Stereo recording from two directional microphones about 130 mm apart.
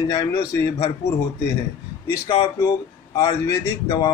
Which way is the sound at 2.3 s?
30° left (ahead or behind).